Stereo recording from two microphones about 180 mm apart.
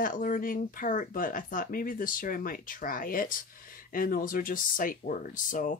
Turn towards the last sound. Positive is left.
turn(degrees=45)  # may be behind; listen again after turning